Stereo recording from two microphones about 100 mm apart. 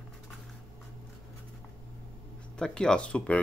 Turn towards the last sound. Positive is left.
turn(degrees=10)  # may be behind; listen again after turning